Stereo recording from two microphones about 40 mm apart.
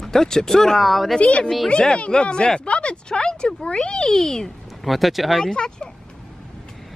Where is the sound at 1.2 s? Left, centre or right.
Left; by 4.5 s centre.